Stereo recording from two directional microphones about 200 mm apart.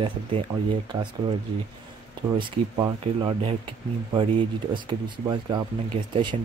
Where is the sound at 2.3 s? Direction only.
25° right (ahead or behind).